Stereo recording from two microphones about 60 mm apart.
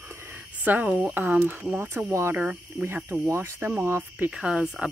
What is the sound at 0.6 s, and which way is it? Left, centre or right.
Speech, right.